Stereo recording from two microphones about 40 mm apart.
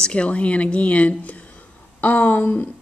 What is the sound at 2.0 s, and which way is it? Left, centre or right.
Speech, left.